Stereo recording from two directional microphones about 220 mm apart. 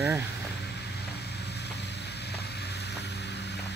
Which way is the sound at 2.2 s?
50° left (ahead or behind).